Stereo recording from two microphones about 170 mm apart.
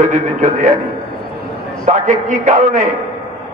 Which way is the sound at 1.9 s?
45° right (ahead or behind).